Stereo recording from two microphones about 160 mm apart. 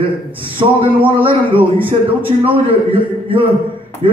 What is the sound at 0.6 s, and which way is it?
A man's voice, 35° right (ahead or behind).